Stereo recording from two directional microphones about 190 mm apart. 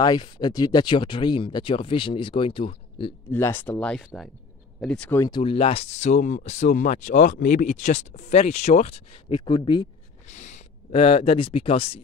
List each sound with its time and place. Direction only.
0.0 s speech: 20° left (ahead or behind)
3.3 s speech: 10° left (ahead or behind)
5.2 s speech: 25° left (ahead or behind)
10.2 s speech: 40° left (ahead or behind)